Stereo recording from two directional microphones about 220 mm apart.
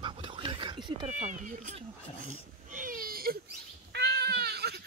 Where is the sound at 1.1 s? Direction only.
35° right (ahead or behind).